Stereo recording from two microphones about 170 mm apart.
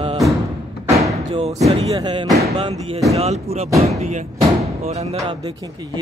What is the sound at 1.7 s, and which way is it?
Music, 30° right (ahead or behind).